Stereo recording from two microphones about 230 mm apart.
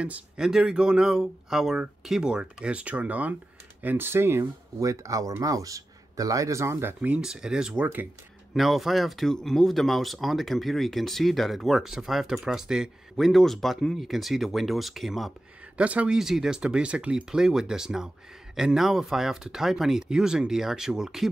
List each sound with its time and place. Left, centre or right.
0.0 s speech: centre